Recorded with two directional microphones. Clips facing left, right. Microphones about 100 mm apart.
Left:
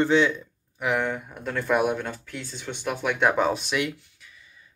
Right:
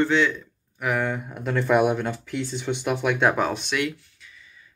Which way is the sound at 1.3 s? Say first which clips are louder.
Right 4 dB; 5° right (ahead or behind).